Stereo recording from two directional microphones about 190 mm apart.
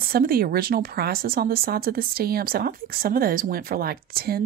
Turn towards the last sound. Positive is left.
turn(degrees=-55)  # may be behind; listen again after turning